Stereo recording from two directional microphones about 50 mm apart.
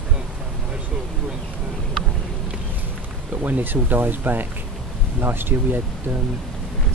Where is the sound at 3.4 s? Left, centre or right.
Right.